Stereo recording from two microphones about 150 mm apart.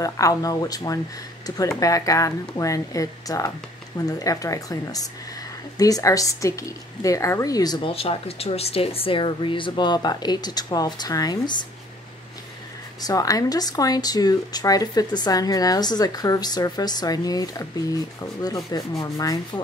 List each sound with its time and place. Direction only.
0.0 s speech: 25° left (ahead or behind)
7.9 s speech: 40° left (ahead or behind)
13.0 s speech: 25° left (ahead or behind)